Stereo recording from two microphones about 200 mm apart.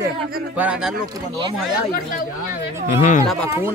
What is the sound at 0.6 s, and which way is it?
Speech, 5° right (ahead or behind).